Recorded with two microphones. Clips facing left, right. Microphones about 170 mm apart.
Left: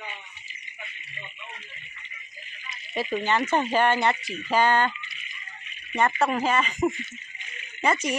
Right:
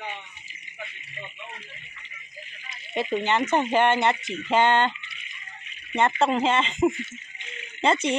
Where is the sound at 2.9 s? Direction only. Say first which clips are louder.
Right 1 dB; 20° right (ahead or behind).